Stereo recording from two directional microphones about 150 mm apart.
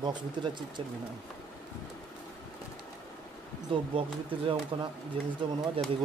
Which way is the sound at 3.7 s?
35° right (ahead or behind).